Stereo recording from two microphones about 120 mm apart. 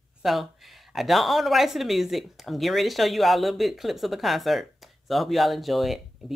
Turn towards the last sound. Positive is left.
turn(degrees=0)  # may be behind; listen again after turning